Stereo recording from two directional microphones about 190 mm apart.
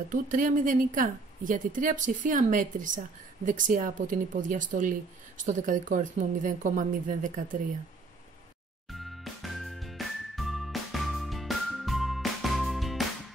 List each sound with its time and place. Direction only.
0.1 s a woman's voice: 45° right (ahead or behind)
8.9 s music: centre (ahead or behind)